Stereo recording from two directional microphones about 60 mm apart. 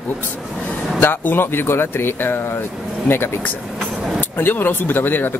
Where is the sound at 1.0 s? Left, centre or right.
Left.